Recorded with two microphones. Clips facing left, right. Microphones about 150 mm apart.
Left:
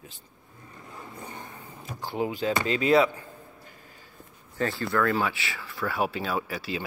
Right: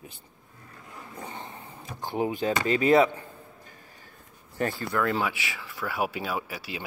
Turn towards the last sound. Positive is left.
turn(degrees=-10)  # may be behind; listen again after turning